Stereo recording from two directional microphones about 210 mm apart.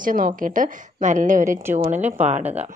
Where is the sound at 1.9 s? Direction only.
10° right (ahead or behind).